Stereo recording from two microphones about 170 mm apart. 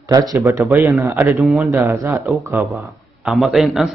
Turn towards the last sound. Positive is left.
turn(degrees=0)  # may be behind; listen again after turning